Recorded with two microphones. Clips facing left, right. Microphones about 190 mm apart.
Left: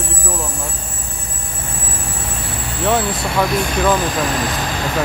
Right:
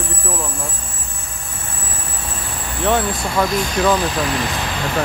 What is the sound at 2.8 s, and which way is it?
Speech, centre (ahead or behind).